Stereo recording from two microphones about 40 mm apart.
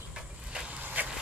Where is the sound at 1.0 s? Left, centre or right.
Right.